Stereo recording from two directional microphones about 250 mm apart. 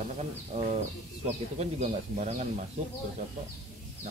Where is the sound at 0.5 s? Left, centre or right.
Right.